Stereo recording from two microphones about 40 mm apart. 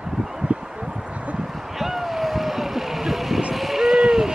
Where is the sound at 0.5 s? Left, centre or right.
Right.